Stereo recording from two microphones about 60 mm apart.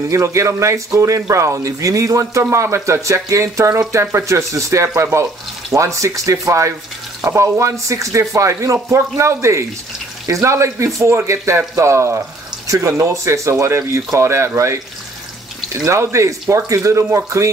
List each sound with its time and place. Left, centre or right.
0.1 s speech: right
2.5 s speech: right
12.6 s speech: right
15.8 s speech: right